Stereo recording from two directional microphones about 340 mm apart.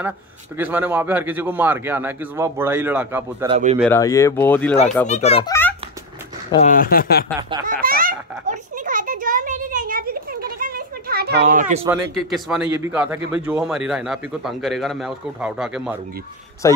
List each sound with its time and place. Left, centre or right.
0.6 s a man's voice: centre
3.8 s speech: centre
5.0 s speech: centre
6.5 s speech: left
7.6 s a sound: right
11.8 s a man's voice: centre
16.6 s speech: centre